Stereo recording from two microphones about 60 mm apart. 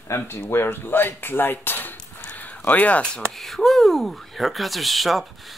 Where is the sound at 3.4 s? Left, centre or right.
Centre.